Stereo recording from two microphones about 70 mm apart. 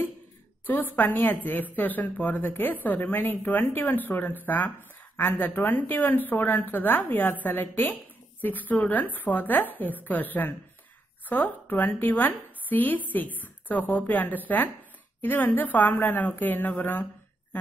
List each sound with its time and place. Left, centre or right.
0.7 s a woman's voice: left